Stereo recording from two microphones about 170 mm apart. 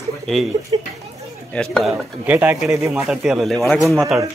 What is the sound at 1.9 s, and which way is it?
A man's voice, 10° right (ahead or behind).